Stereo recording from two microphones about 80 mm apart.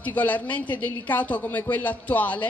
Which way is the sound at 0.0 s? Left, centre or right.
Centre.